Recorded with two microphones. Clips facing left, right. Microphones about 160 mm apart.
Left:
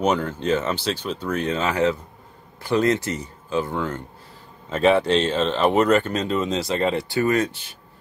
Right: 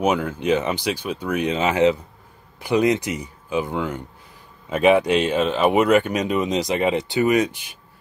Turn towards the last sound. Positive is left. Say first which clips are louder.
# right 2 dB
turn(degrees=-15)  # may be behind; listen again after turning